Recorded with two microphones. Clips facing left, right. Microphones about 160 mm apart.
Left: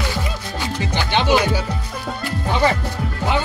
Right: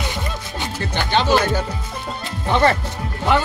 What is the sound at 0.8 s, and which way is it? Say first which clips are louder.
Speech: right 1 dB; 15° left (ahead or behind).